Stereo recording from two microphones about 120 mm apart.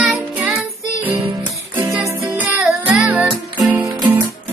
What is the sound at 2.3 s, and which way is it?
Music, 10° right (ahead or behind).